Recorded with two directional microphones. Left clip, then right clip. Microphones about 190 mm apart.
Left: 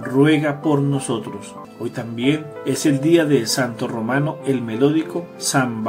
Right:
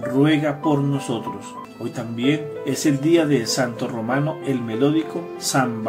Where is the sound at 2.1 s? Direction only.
15° left (ahead or behind).